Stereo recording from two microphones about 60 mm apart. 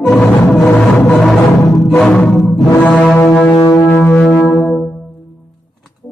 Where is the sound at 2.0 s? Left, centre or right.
Centre.